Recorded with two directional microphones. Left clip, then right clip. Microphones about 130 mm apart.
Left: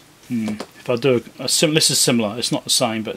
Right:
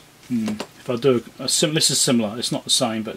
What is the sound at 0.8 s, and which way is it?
Speech, 20° left (ahead or behind).